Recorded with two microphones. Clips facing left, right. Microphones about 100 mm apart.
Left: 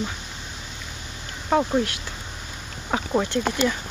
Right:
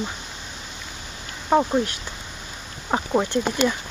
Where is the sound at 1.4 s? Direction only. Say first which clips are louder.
Right 2 dB; 10° right (ahead or behind).